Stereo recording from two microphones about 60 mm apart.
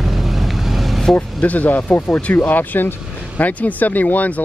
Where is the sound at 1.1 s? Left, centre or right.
Left.